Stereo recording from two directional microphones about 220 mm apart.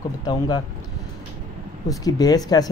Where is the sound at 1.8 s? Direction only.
15° left (ahead or behind).